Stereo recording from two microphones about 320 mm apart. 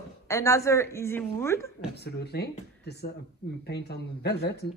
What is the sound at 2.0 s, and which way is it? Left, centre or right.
Speech, left.